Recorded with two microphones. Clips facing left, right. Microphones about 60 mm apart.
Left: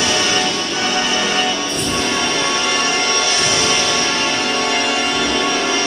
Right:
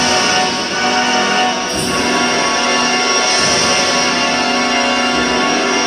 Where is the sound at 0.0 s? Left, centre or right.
Right.